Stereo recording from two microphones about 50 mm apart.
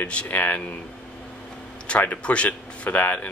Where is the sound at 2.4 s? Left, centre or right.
Left.